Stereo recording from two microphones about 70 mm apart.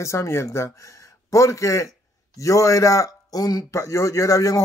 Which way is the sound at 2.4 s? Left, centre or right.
Left.